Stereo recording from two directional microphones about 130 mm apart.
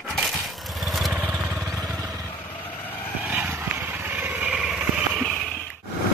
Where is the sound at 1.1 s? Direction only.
10° right (ahead or behind).